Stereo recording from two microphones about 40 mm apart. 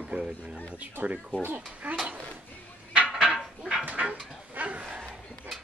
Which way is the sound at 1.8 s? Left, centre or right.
Right.